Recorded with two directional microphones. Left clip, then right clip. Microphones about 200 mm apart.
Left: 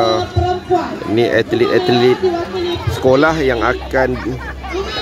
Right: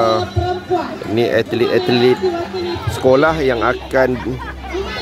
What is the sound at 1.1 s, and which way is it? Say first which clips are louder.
Speech: left 2 dB; 10° right (ahead or behind).